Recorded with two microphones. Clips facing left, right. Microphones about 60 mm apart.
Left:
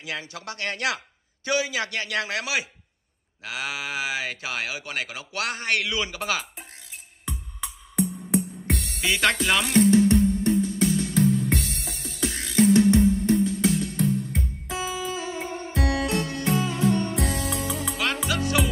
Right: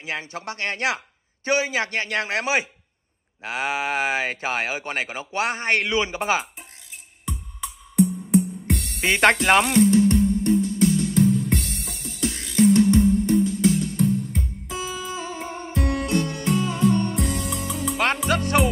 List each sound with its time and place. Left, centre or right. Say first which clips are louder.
0.0 s speech: right 3 dB; right
8.0 s music: right 6 dB; centre
9.0 s speech: right 5 dB; right
9.7 s music: right 1 dB; centre
15.1 s music: even; centre
17.9 s music: right 6 dB; right